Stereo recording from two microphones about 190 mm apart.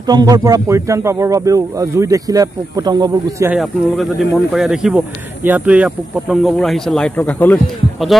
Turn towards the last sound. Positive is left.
turn(degrees=10)  # may be behind; listen again after turning